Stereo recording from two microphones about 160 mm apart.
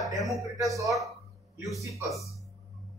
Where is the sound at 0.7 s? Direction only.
20° right (ahead or behind).